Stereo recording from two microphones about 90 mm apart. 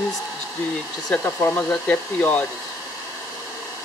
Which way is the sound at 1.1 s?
25° left (ahead or behind).